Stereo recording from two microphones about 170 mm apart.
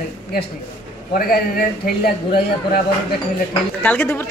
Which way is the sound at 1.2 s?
60° left (ahead or behind).